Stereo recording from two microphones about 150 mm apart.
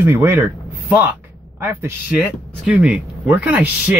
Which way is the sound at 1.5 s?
15° right (ahead or behind).